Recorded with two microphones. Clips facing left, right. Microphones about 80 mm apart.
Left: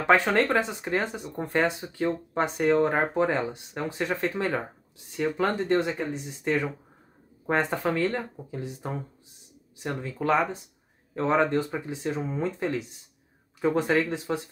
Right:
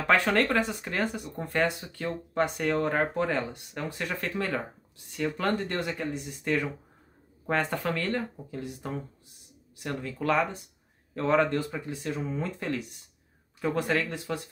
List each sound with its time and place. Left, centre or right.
0.0 s speech: left
8.5 s speech: left
13.7 s speech: left